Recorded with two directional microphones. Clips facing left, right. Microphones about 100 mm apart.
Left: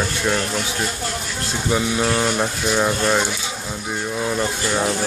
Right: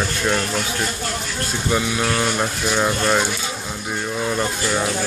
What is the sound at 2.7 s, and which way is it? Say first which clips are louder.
Speech: even; centre (ahead or behind).